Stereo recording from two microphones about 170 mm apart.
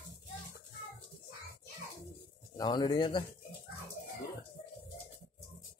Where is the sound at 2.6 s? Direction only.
25° left (ahead or behind).